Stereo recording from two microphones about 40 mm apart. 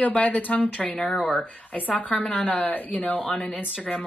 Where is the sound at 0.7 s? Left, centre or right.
Left.